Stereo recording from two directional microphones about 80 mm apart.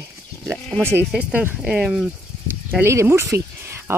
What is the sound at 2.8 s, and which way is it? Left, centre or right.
Speech, right.